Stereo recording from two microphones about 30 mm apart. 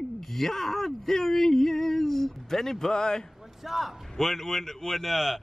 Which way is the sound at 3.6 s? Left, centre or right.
Centre.